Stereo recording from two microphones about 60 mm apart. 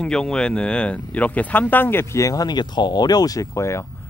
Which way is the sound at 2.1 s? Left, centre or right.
Left.